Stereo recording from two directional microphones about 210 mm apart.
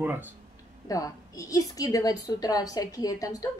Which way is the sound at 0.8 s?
15° left (ahead or behind).